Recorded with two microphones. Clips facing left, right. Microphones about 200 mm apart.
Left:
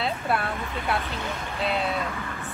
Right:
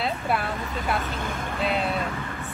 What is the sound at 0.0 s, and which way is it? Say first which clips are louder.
Vehicle: even; centre (ahead or behind).